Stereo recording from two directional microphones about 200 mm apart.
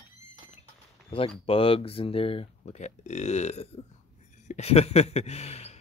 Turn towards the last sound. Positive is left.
turn(degrees=30)  # may be behind; listen again after turning